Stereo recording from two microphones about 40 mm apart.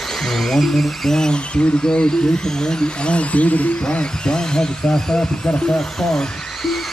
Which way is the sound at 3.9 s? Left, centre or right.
Centre.